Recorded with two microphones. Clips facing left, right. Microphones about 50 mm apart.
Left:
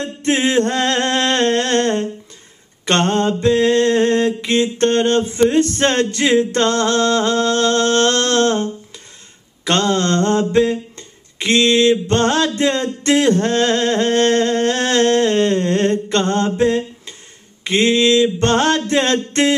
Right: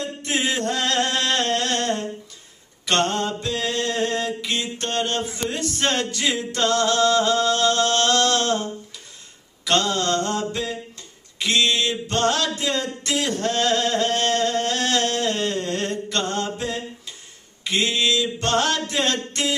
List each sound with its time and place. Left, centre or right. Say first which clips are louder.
0.0 s music: left 7 dB; left
2.8 s a sound: left 5 dB; left
4.5 s male singing: left 11 dB; left
9.7 s male singing: left 5 dB; left
10.5 s mantra: left 13 dB; left
11.9 s male singing: left 7 dB; left
12.5 s a sound: left 7 dB; left
17.6 s mantra: left 8 dB; left